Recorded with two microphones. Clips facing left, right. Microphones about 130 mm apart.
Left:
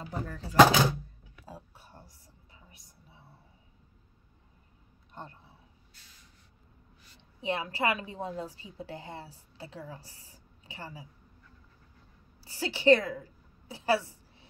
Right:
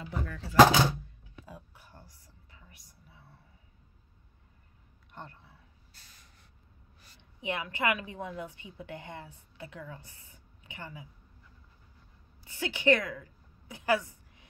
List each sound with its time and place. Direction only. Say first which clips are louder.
0.0 s a woman's voice: even; 40° left (ahead or behind)
1.4 s a sound: left 2 dB; 30° left (ahead or behind)
5.1 s a sound: left 1 dB; 20° left (ahead or behind)
5.9 s vehicle: right 3 dB; 45° right (ahead or behind)
7.4 s a woman's voice: left 1 dB; 30° left (ahead or behind)
12.4 s a woman's voice: left 4 dB; 35° left (ahead or behind)